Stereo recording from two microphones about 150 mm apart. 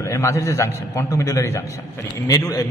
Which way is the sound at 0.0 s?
20° left (ahead or behind).